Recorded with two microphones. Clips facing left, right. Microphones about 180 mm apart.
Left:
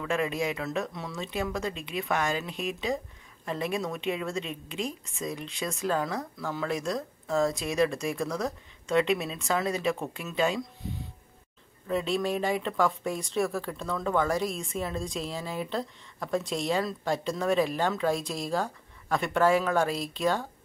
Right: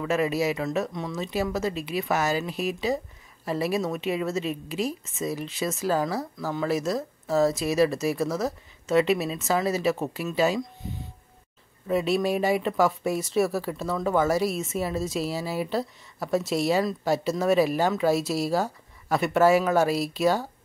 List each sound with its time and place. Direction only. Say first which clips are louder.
0.0 s speech: right 4 dB; 5° right (ahead or behind)